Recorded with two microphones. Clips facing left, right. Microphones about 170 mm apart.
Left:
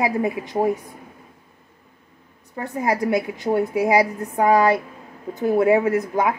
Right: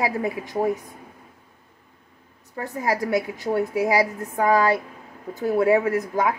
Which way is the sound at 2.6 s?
20° left (ahead or behind).